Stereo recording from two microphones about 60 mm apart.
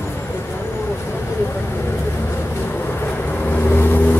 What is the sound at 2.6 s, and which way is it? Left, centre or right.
Vehicle, left.